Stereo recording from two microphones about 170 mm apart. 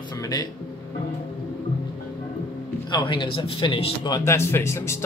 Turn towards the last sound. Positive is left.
turn(degrees=15)  # may be behind; listen again after turning